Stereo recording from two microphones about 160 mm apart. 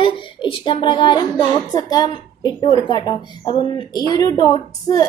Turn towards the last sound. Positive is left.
turn(degrees=25)  # may be behind; listen again after turning